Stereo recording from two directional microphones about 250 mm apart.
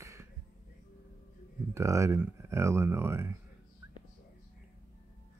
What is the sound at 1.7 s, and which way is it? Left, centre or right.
Speech, centre.